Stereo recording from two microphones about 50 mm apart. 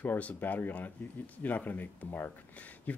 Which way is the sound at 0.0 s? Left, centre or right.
Left.